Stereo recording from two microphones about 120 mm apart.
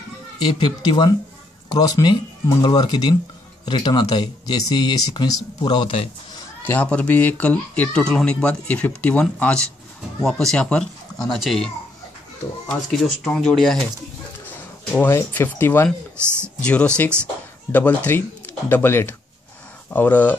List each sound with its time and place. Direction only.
0.4 s speech: 40° left (ahead or behind)
6.6 s speech: 15° left (ahead or behind)
13.2 s speech: 5° left (ahead or behind)
14.4 s a sound: 15° left (ahead or behind)
15.3 s speech: 15° left (ahead or behind)